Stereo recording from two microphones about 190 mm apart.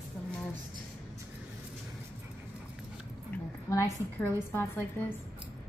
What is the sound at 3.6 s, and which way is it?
A woman's voice, 15° left (ahead or behind).